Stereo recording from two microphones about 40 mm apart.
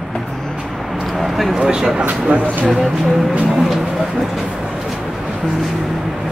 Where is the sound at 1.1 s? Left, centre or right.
Centre.